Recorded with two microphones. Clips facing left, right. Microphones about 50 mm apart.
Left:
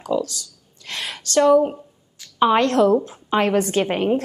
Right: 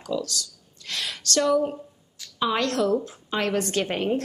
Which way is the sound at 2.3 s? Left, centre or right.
Left.